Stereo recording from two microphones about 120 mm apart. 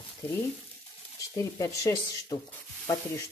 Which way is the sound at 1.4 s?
25° left (ahead or behind).